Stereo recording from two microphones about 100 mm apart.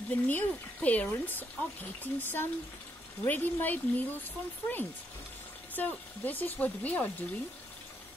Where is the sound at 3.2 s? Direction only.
20° left (ahead or behind).